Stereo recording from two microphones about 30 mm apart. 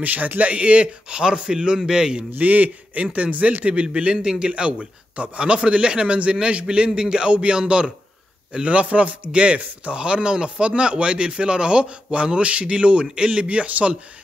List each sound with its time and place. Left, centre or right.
0.0 s a man's voice: right
1.1 s a man's voice: right
2.3 s a man's voice: right